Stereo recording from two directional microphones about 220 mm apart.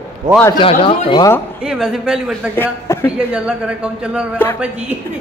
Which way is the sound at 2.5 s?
15° left (ahead or behind).